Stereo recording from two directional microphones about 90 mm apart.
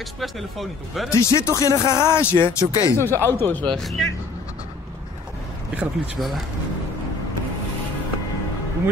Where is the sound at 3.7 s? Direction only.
Centre (ahead or behind).